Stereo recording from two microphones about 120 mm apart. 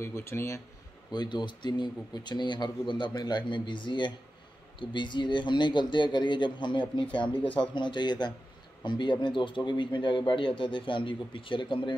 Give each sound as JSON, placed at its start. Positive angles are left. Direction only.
{"t": 0.0, "sound": "speech", "side_deg": 20}
{"t": 1.1, "sound": "a man's voice", "side_deg": 40}